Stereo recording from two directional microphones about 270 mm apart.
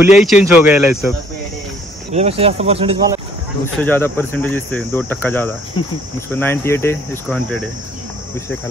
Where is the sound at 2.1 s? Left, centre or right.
Right.